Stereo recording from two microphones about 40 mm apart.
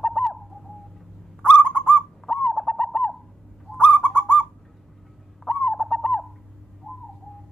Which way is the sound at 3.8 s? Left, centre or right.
Left.